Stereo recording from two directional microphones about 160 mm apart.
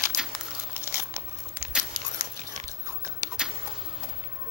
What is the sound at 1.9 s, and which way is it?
Biting, 50° right (ahead or behind).